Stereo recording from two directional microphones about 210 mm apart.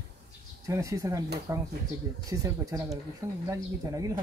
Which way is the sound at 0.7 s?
15° right (ahead or behind).